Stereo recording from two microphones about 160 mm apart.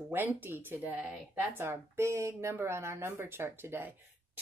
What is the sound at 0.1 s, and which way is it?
Speech, 15° right (ahead or behind).